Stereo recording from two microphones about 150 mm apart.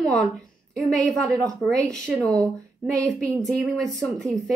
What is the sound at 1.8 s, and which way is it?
Speech, 5° left (ahead or behind).